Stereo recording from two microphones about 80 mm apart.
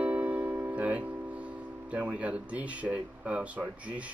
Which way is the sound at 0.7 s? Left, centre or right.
Centre.